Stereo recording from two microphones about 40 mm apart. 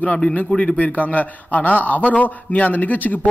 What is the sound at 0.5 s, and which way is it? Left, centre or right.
Speech, left.